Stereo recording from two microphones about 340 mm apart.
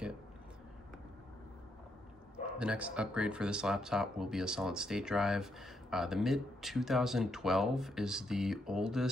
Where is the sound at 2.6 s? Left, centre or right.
Centre.